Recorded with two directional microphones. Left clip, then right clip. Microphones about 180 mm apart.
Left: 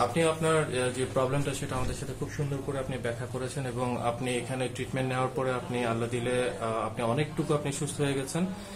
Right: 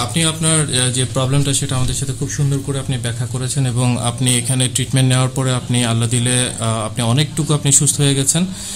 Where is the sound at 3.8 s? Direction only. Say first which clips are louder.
Right 8 dB; 70° right (ahead or behind).